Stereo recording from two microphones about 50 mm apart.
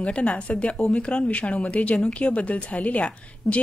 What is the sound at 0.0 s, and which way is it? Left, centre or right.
A woman's voice, left.